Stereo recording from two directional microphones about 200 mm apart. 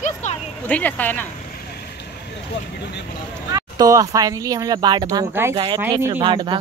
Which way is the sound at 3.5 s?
15° right (ahead or behind).